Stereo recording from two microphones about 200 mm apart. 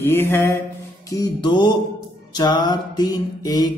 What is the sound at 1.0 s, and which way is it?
Music, 15° left (ahead or behind).